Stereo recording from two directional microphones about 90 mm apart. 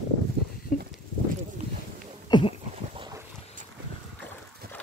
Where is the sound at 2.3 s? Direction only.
60° left (ahead or behind).